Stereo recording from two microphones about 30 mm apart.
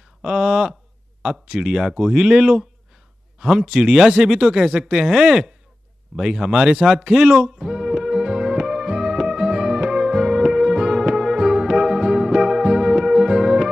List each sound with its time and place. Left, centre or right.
0.2 s speech: right
7.5 s music: centre